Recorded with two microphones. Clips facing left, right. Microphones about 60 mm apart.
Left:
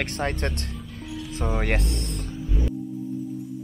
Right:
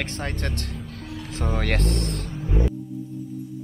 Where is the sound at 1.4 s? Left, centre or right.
Centre.